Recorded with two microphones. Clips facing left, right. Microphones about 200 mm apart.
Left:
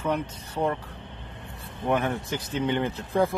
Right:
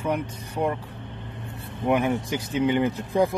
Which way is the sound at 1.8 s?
10° right (ahead or behind).